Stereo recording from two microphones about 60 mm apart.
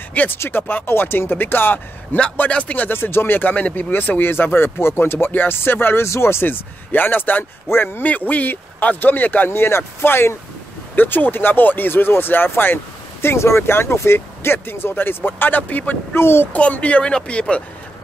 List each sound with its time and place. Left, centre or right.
0.3 s speech: left
6.0 s speech: left
8.0 s speech: left
9.5 s speech: left
16.2 s speech: left
16.5 s speech: left